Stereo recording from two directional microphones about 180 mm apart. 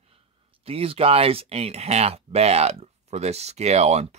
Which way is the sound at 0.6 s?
30° right (ahead or behind).